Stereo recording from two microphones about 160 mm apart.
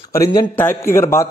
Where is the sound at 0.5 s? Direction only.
15° left (ahead or behind).